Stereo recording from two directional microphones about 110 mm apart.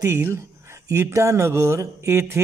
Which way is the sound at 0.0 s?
20° right (ahead or behind).